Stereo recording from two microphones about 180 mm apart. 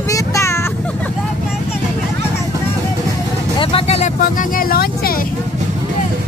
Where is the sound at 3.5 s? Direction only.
30° left (ahead or behind); by 5.1 s 55° left (ahead or behind).